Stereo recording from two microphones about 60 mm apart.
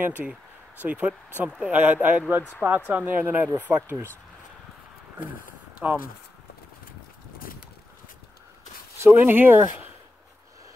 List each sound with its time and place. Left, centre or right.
0.0 s speech: right
3.7 s speech: right
5.8 s speech: right
8.9 s speech: right